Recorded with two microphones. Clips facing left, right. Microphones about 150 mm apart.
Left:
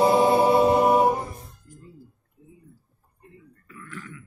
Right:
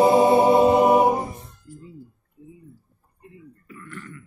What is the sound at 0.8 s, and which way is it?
Music, 15° right (ahead or behind).